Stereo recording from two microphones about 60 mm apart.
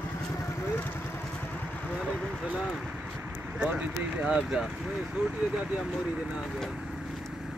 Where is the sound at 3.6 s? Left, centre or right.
Right.